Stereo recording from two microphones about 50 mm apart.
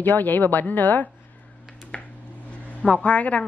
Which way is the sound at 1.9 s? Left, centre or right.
Left.